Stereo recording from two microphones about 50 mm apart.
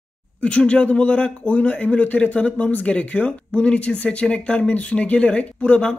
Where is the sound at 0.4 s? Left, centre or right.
Left.